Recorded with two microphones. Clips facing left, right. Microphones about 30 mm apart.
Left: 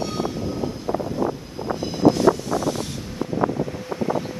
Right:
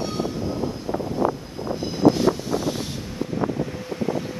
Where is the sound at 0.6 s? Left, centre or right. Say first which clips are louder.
Even; left.